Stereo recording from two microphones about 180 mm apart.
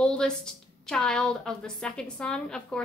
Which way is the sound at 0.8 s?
5° left (ahead or behind).